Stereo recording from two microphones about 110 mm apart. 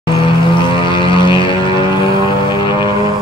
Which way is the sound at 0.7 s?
50° left (ahead or behind).